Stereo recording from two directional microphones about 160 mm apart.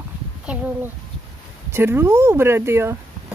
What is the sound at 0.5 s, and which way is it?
Speech, 5° right (ahead or behind).